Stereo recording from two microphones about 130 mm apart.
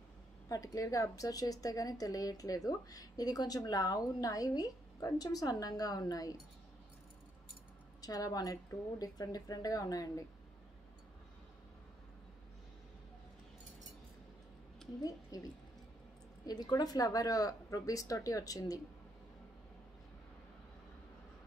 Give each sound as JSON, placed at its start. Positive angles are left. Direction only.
{"t": 0.5, "sound": "a woman's voice", "side_deg": 25}
{"t": 8.0, "sound": "a woman's voice", "side_deg": 30}
{"t": 15.3, "sound": "a woman's voice", "side_deg": 30}